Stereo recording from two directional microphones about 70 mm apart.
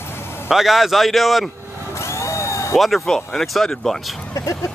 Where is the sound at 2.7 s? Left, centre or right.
Centre.